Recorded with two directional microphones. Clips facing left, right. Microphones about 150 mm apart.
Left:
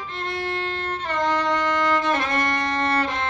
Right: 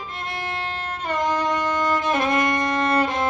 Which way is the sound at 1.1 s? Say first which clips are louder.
Even; 10° right (ahead or behind).